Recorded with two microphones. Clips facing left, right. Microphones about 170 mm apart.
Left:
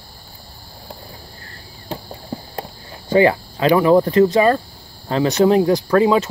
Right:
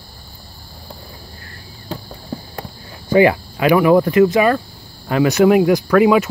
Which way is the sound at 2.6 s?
30° left (ahead or behind).